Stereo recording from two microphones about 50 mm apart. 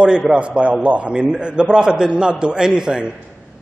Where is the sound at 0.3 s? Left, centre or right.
Right.